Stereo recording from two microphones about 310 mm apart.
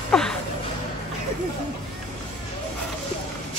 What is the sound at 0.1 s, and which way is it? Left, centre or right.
Music, centre.